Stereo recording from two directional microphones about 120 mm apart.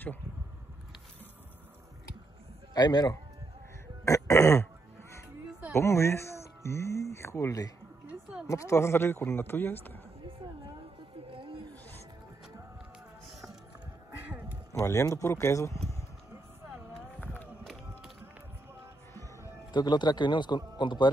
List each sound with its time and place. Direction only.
2.7 s a man's voice: 35° left (ahead or behind)
4.0 s throat clearing: 25° left (ahead or behind)
5.7 s speech: 25° left (ahead or behind)
8.1 s a sound: 10° right (ahead or behind)
8.5 s speech: 25° left (ahead or behind)
11.3 s wild animals: 45° right (ahead or behind)
14.1 s a sound: 15° right (ahead or behind)
14.7 s speech: 25° left (ahead or behind)
16.9 s a sound: 15° left (ahead or behind)
19.7 s a man's voice: 35° left (ahead or behind)